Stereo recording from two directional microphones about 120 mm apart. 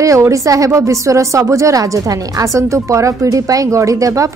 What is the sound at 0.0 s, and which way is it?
A woman's voice, 25° right (ahead or behind).